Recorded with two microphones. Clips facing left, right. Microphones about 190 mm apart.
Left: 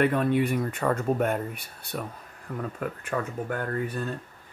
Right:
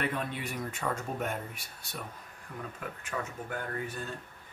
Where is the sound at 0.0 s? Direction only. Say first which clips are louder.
Left 11 dB; 55° left (ahead or behind).